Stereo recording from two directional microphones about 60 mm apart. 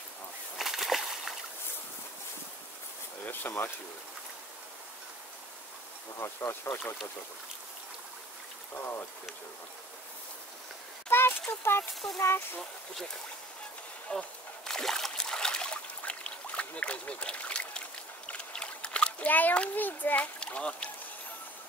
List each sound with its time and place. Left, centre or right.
0.6 s a sound: centre
3.3 s speech: left
6.1 s speech: left
11.1 s a sound: left
11.9 s speech: centre
14.1 s a child's voice: centre
14.7 s trickle: centre
18.4 s a sound: centre
19.2 s a child's voice: left
20.3 s speech: centre